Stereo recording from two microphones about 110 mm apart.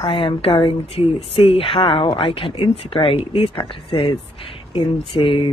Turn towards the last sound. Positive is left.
turn(degrees=55)  # may be behind; listen again after turning